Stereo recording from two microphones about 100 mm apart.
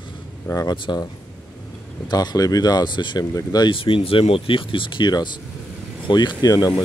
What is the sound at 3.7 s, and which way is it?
Speech, 60° left (ahead or behind).